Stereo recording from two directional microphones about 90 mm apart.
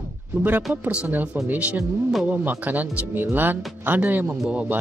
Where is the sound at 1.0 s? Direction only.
20° right (ahead or behind).